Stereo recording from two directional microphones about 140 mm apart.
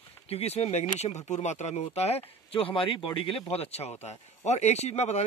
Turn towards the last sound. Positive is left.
turn(degrees=50)  # may be behind; listen again after turning